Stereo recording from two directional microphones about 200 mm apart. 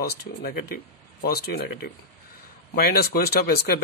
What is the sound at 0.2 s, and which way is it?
Speech, 50° left (ahead or behind).